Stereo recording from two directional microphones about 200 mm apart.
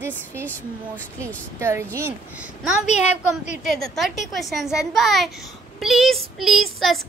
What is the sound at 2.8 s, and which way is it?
Speech, 35° left (ahead or behind).